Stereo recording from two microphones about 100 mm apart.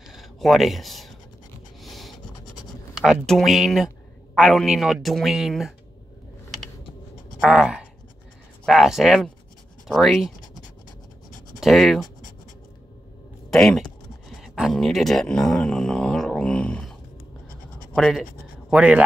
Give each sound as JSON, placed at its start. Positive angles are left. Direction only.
{"t": 0.1, "sound": "a sound", "side_deg": 0}
{"t": 3.0, "sound": "speech", "side_deg": 0}
{"t": 7.4, "sound": "speech", "side_deg": -10}
{"t": 11.6, "sound": "speech", "side_deg": 0}
{"t": 13.5, "sound": "speech", "side_deg": 5}
{"t": 14.4, "sound": "a sound", "side_deg": 0}
{"t": 17.9, "sound": "speech", "side_deg": 0}
{"t": 18.7, "sound": "speech", "side_deg": -15}